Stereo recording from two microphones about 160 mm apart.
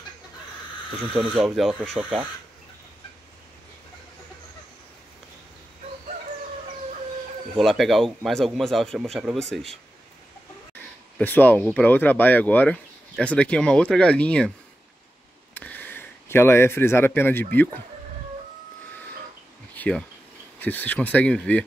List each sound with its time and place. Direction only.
1.1 s a man's voice: 5° right (ahead or behind)
7.5 s a man's voice: centre (ahead or behind)
11.1 s speech: 10° left (ahead or behind)
15.5 s speech: 10° left (ahead or behind)
19.7 s a sound: 10° left (ahead or behind)
20.5 s speech: 10° left (ahead or behind)